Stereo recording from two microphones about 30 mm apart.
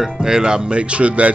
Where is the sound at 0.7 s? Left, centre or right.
Right.